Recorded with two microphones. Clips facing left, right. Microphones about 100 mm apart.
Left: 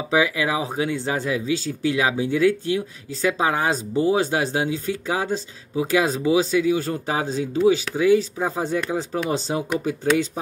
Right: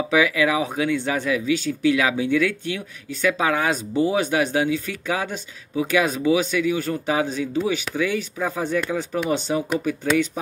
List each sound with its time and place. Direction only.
0.1 s speech: 30° left (ahead or behind)